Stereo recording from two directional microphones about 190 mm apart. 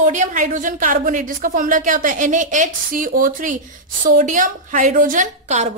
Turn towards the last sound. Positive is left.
turn(degrees=-40)  # may be behind; listen again after turning